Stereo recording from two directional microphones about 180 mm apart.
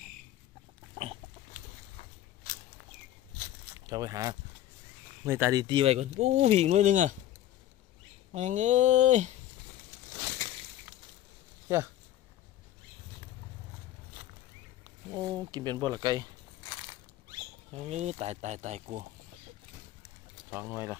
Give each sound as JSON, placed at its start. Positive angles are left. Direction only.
{"t": 3.9, "sound": "speech", "side_deg": -20}
{"t": 8.3, "sound": "speech", "side_deg": -40}
{"t": 15.1, "sound": "speech", "side_deg": -20}
{"t": 17.8, "sound": "speech", "side_deg": -40}
{"t": 20.5, "sound": "speech", "side_deg": -10}